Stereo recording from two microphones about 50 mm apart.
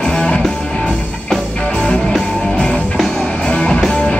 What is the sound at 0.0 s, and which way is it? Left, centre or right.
Music, centre.